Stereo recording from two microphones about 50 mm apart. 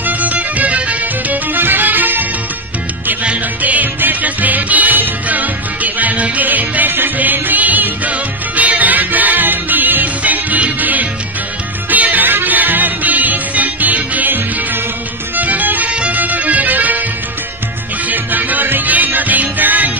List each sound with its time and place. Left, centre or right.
0.0 s music: right
3.3 s music: right
15.9 s music: right
18.0 s music: right